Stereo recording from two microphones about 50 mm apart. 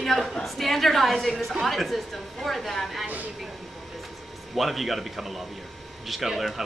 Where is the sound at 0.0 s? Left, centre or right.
Centre.